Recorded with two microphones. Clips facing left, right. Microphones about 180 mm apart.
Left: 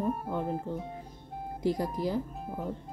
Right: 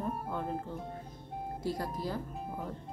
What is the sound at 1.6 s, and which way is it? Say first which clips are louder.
Speech: left 7 dB; 15° left (ahead or behind).